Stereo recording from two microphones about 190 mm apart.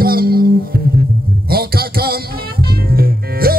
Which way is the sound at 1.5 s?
55° right (ahead or behind).